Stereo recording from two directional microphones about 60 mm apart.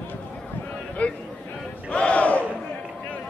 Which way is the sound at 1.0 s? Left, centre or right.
Left.